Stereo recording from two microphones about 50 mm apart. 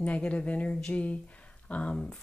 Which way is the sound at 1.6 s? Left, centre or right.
Left.